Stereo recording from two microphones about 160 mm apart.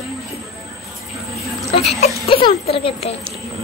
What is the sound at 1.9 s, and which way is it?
Speech, 40° left (ahead or behind).